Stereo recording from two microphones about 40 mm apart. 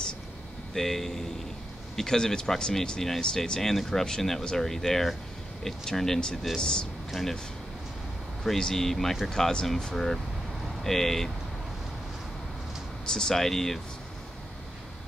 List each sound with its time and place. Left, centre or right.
0.7 s speech: centre
7.1 s speech: centre
8.5 s speech: centre
13.0 s speech: centre